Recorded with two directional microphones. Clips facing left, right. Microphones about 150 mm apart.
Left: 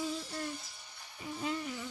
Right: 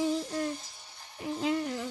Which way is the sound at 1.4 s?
70° right (ahead or behind).